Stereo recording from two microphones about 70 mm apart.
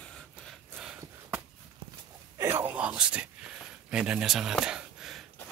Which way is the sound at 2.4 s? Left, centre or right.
Right.